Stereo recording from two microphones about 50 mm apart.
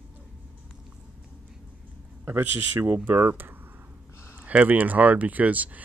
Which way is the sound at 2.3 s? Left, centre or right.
Right.